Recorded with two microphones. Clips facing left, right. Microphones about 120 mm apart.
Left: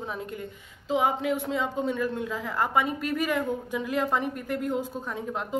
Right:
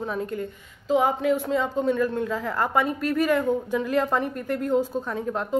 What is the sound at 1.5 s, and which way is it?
A woman's voice, 15° left (ahead or behind).